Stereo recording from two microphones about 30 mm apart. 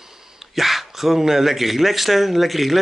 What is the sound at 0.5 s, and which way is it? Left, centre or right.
Speech, centre.